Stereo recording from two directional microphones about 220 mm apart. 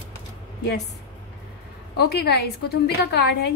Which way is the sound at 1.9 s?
45° left (ahead or behind).